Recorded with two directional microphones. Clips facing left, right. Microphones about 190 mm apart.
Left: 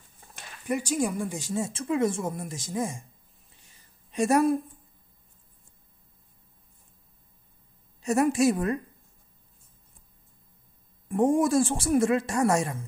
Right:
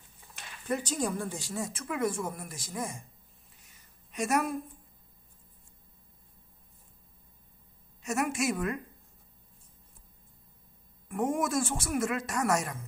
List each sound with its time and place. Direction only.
0.7 s speech: 10° left (ahead or behind)
3.5 s a sound: 30° left (ahead or behind)
8.0 s a man's voice: 35° left (ahead or behind)
11.1 s a man's voice: 30° left (ahead or behind)